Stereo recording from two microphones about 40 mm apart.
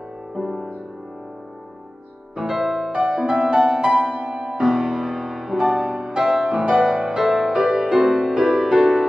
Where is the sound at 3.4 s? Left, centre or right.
Centre.